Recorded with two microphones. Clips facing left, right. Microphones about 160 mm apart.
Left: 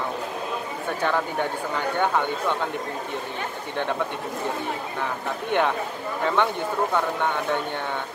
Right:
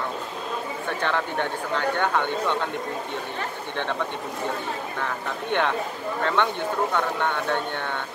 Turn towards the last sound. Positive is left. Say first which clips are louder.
# left 1 dB
turn(degrees=10)  # may be behind; listen again after turning